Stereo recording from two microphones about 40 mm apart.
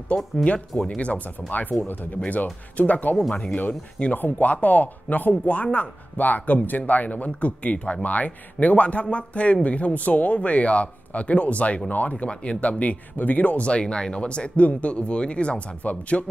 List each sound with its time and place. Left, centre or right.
0.4 s speech: left
4.2 s speech: left
6.1 s speech: left
13.7 s speech: left